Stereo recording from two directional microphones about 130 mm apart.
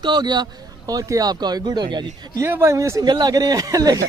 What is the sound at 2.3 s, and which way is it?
Speech, 20° right (ahead or behind).